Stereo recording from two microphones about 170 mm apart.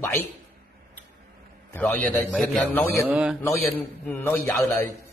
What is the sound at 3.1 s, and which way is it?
Speech, 5° right (ahead or behind).